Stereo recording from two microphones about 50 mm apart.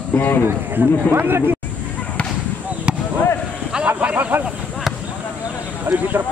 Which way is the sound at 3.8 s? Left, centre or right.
Right.